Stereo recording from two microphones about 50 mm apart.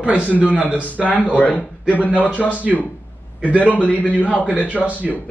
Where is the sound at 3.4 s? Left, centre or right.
Right.